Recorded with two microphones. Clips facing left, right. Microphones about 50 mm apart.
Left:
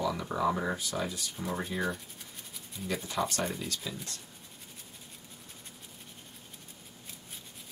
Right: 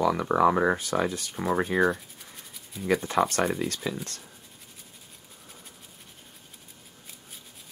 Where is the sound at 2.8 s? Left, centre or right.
Right.